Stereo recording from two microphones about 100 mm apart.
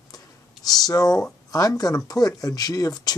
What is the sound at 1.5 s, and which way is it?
Speech, 35° left (ahead or behind).